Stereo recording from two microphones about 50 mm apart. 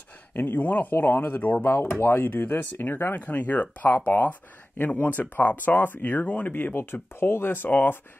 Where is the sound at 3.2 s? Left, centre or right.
Left.